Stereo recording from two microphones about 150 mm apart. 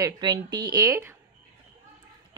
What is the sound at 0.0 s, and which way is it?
A woman's voice, 25° right (ahead or behind).